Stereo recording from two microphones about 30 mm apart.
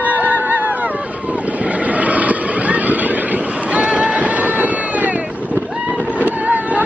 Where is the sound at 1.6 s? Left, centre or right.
Right.